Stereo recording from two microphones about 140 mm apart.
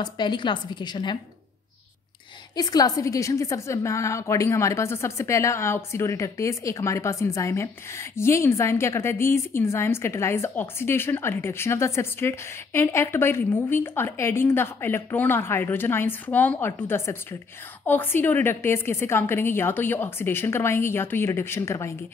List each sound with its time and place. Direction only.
0.0 s a woman's voice: 30° left (ahead or behind)
2.5 s a woman's voice: 25° left (ahead or behind)